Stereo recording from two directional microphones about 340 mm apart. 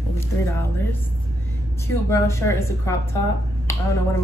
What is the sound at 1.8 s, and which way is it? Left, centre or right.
Speech, centre.